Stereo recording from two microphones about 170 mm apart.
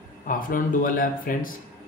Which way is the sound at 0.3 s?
55° left (ahead or behind).